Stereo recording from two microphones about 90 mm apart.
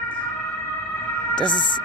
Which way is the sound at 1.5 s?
55° left (ahead or behind).